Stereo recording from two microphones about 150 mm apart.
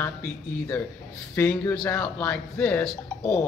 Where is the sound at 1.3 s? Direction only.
15° left (ahead or behind).